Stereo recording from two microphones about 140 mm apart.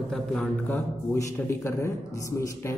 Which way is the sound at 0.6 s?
15° left (ahead or behind).